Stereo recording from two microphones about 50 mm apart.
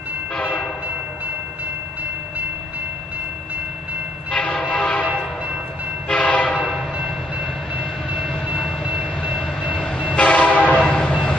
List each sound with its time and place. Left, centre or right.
0.4 s train: left
4.3 s train: left
6.0 s train: left
9.7 s train: left